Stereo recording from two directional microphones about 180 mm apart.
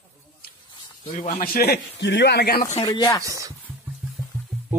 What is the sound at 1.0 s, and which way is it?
Speech, 45° left (ahead or behind).